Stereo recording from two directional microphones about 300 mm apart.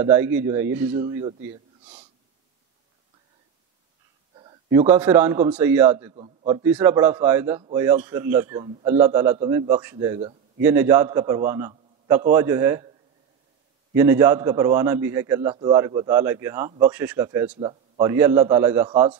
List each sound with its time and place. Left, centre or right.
0.0 s a man's voice: centre
4.4 s a man's voice: centre
6.1 s a man's voice: centre
6.6 s a man's voice: centre
13.9 s a man's voice: centre